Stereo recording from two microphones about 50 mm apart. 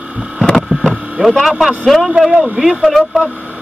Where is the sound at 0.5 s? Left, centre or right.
Centre.